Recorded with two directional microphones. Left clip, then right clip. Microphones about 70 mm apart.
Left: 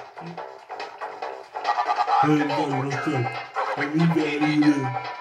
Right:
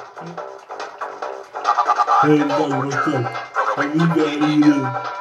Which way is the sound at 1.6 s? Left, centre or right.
Centre.